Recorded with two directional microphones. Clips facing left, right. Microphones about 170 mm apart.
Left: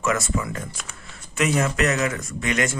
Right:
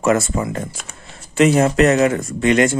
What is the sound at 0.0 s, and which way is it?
Speech, 30° right (ahead or behind).